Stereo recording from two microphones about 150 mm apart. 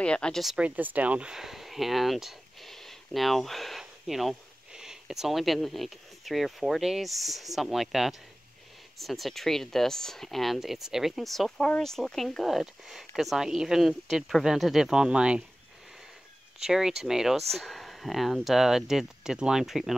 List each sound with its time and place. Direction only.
0.0 s speech: 5° left (ahead or behind)
16.6 s speech: 5° right (ahead or behind)